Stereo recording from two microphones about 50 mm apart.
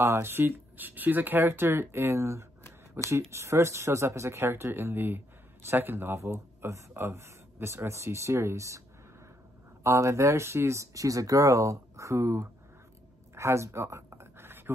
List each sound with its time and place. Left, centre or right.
0.0 s a man's voice: right
6.1 s a man's voice: right
9.8 s speech: right
13.3 s a sound: right